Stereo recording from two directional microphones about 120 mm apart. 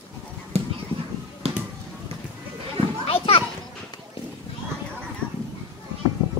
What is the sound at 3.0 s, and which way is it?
Children playing, 55° left (ahead or behind).